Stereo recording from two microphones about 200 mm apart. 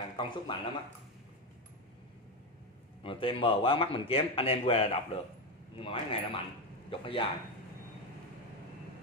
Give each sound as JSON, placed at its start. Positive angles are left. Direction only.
{"t": 0.2, "sound": "speech", "side_deg": 25}
{"t": 3.0, "sound": "speech", "side_deg": 25}